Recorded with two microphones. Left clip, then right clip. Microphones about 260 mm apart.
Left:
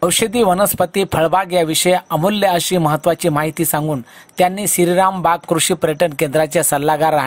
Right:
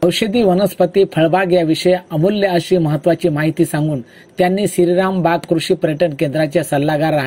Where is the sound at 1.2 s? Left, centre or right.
Left.